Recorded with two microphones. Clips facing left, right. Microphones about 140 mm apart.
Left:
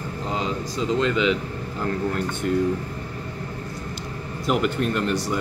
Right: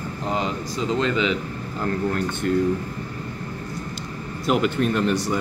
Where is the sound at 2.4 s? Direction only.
5° left (ahead or behind).